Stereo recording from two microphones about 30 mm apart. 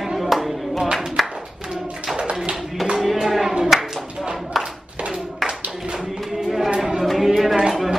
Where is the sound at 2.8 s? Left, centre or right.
Centre.